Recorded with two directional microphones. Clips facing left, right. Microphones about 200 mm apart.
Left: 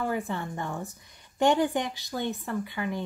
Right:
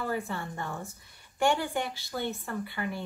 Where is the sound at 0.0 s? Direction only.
15° left (ahead or behind).